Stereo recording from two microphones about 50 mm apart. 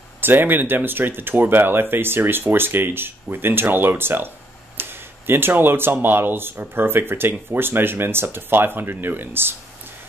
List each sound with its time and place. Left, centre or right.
0.2 s speech: right